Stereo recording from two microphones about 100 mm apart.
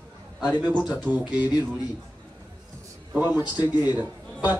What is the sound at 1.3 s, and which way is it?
Speech, 45° left (ahead or behind).